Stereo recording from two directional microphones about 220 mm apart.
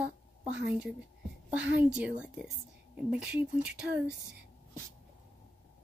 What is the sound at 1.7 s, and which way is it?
Speech, 5° right (ahead or behind).